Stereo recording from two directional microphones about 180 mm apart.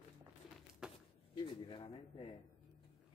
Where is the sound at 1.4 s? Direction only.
25° left (ahead or behind).